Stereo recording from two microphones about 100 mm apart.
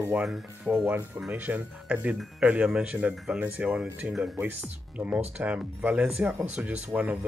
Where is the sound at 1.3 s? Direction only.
20° right (ahead or behind).